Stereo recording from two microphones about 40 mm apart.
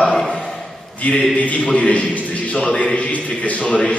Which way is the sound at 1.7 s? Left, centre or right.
Left.